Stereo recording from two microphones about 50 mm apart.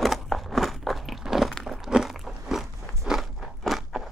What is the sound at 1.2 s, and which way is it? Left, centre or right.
Walk, centre.